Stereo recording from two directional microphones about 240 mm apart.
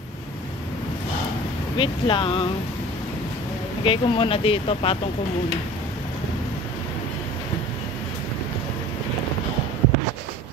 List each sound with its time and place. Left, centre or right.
1.8 s speech: left
3.8 s speech: left